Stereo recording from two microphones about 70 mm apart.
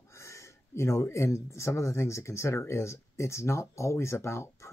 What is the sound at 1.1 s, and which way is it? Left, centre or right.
Speech, left.